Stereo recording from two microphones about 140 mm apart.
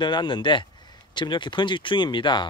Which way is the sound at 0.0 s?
35° left (ahead or behind).